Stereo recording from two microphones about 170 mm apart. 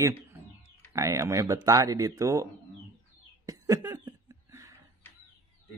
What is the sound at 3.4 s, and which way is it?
Cough, 20° right (ahead or behind).